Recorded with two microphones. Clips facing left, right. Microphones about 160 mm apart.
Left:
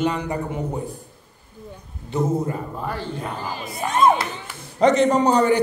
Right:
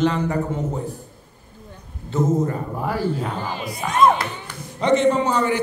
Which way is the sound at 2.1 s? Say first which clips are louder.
Right 2 dB; 10° left (ahead or behind).